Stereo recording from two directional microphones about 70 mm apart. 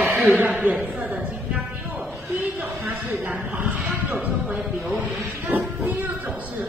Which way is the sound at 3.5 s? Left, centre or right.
Centre.